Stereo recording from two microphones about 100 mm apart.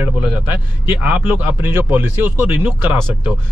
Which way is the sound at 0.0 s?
15° right (ahead or behind).